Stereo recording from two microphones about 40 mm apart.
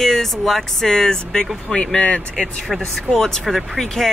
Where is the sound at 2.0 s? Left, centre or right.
Left.